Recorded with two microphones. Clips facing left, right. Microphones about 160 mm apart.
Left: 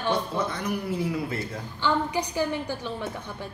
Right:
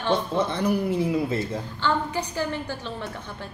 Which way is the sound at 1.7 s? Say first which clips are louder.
Left 1 dB; 15° left (ahead or behind).